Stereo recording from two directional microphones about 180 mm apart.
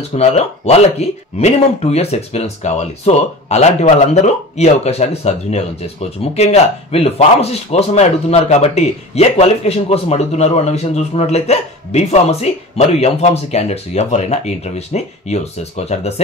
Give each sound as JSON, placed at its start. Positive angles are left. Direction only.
{"t": 0.1, "sound": "speech", "side_deg": 35}